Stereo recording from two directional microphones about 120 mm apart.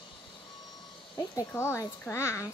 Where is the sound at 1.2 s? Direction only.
25° left (ahead or behind).